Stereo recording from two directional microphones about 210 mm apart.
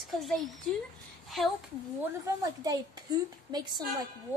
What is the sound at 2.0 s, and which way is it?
A woman's voice, 15° right (ahead or behind).